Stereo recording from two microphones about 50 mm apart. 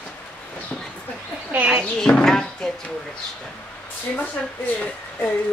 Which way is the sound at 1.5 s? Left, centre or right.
Right.